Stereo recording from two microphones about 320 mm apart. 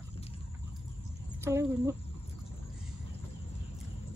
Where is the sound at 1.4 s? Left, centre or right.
Centre.